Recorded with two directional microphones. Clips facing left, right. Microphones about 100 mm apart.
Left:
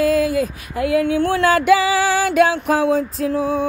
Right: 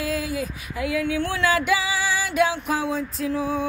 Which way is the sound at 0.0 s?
55° left (ahead or behind).